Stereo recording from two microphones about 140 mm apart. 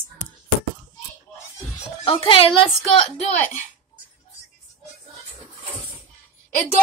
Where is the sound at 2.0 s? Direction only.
40° left (ahead or behind).